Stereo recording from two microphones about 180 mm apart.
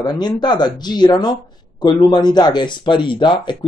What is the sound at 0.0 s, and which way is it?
Speech, 25° left (ahead or behind).